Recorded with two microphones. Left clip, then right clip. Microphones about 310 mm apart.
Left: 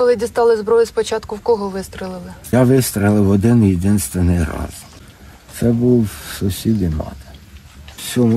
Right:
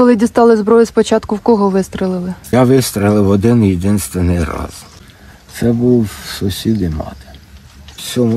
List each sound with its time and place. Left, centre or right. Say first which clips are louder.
0.0 s speech: right 4 dB; centre
2.5 s speech: right 3 dB; centre